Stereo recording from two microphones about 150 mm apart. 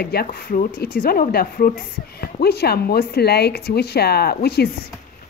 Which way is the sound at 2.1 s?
90° left.